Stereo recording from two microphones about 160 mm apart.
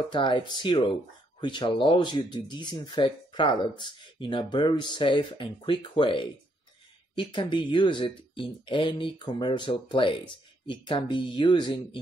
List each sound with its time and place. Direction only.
0.1 s speech: 30° left (ahead or behind)